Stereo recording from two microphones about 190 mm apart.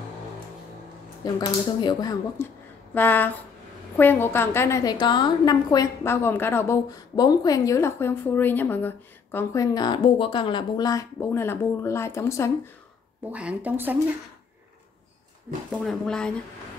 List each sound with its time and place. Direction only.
1.2 s a woman's voice: 20° left (ahead or behind)
13.3 s speech: 5° right (ahead or behind)
15.7 s speech: centre (ahead or behind)